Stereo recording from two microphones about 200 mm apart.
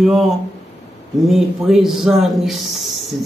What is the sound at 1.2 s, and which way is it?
A man's voice, centre (ahead or behind).